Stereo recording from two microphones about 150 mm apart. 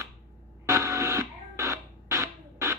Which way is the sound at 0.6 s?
20° right (ahead or behind).